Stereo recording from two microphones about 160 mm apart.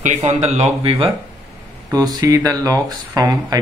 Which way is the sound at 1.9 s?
25° right (ahead or behind).